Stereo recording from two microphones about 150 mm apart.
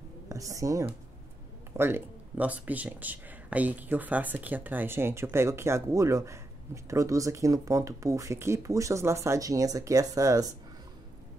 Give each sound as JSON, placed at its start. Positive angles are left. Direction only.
{"t": 0.3, "sound": "speech", "side_deg": -20}